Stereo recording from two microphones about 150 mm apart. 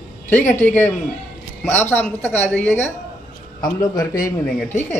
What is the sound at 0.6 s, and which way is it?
Speech, 10° left (ahead or behind).